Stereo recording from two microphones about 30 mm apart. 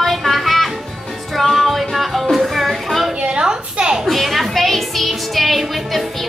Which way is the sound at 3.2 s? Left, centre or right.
Right.